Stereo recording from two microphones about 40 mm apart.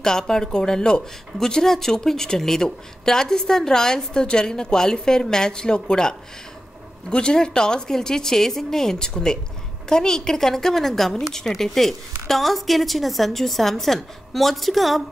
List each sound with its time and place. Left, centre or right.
0.0 s a woman's voice: centre